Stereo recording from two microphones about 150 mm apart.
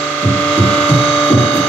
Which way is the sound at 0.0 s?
10° left (ahead or behind).